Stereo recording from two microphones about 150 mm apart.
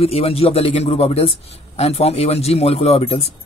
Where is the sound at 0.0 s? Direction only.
40° left (ahead or behind).